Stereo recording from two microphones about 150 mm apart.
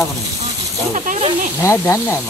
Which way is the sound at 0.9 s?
50° right (ahead or behind).